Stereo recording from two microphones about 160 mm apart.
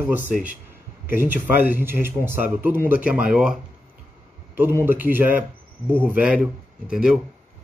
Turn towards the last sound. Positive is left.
turn(degrees=-5)  # may be behind; listen again after turning